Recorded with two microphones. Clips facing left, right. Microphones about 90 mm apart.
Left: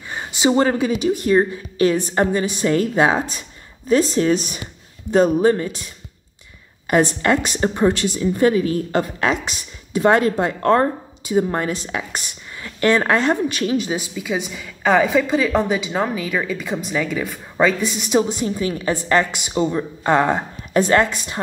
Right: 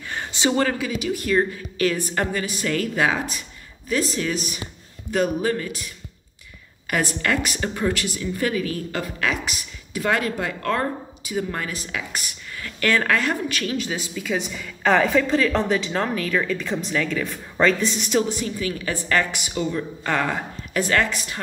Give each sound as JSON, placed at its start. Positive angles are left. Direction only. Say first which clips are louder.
{"t": 0.1, "sound": "a sound", "louder": "left 4 dB", "side_deg": 15}
{"t": 0.6, "sound": "speech", "louder": "left 5 dB", "side_deg": 30}
{"t": 6.9, "sound": "speech", "louder": "left 7 dB", "side_deg": 25}